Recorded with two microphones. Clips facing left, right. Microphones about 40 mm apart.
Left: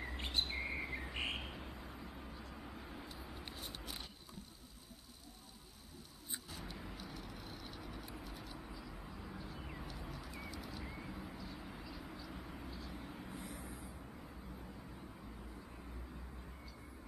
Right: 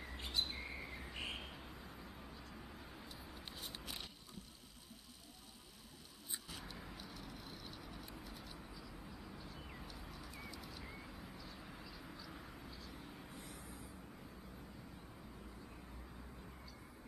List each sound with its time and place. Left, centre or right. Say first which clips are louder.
0.2 s bird: left 2 dB; left
1.5 s vehicle: left 3 dB; centre
6.6 s vehicle: left 3 dB; centre
9.9 s horse: left 4 dB; centre
10.6 s vehicle: left 4 dB; centre